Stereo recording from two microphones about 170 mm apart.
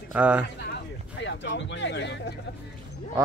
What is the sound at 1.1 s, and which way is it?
Speech, 90° left.